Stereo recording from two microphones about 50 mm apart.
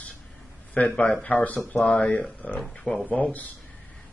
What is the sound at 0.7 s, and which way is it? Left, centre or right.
Speech, left.